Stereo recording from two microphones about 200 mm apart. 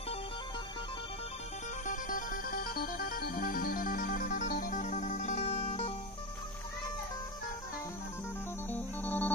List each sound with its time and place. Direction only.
1.9 s music: 45° left (ahead or behind)
8.6 s music: 10° left (ahead or behind)